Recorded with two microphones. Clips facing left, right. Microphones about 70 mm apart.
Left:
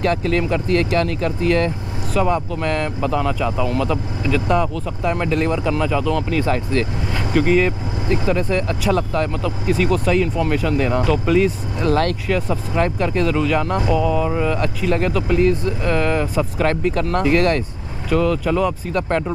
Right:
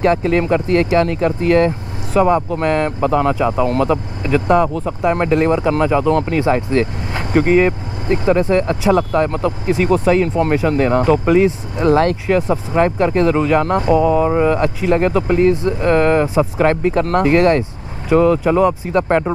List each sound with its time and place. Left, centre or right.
0.0 s speech: right